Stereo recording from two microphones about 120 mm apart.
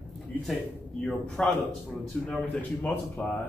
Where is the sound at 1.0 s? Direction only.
5° left (ahead or behind).